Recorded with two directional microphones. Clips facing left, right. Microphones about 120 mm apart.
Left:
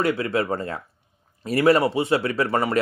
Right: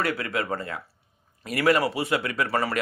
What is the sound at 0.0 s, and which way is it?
Speech, 25° left (ahead or behind).